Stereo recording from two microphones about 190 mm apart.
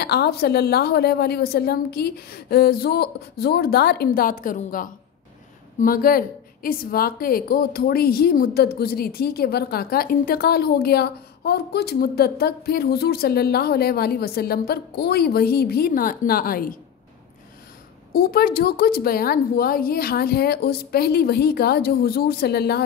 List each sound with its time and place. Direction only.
0.0 s a woman's voice: 55° left (ahead or behind)
18.1 s a woman's voice: 50° left (ahead or behind)